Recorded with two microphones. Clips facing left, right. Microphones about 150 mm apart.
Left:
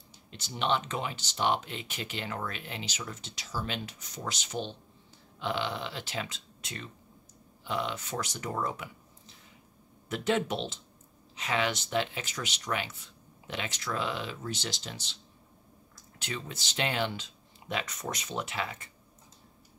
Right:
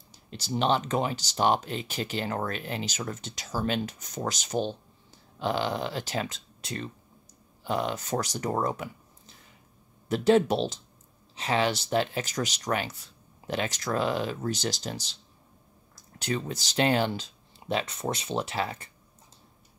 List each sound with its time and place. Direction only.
0.1 s speech: 40° right (ahead or behind)
10.0 s speech: 35° right (ahead or behind)
16.2 s speech: 40° right (ahead or behind)